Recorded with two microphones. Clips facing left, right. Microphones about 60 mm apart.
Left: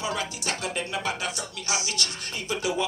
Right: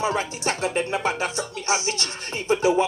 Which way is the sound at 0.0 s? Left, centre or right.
Right.